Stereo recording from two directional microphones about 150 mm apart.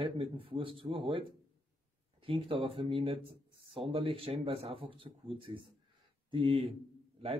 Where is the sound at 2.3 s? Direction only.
35° right (ahead or behind).